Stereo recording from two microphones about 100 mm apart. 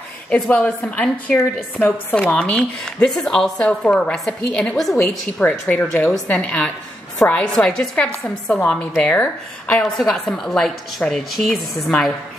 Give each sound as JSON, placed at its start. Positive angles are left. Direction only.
{"t": 0.3, "sound": "a woman's voice", "side_deg": 15}
{"t": 4.9, "sound": "a woman's voice", "side_deg": 15}
{"t": 9.9, "sound": "a woman's voice", "side_deg": 0}